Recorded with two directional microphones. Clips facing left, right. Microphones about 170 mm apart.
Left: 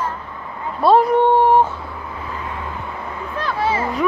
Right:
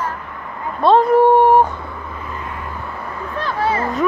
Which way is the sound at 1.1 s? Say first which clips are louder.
Right 3 dB; 10° right (ahead or behind).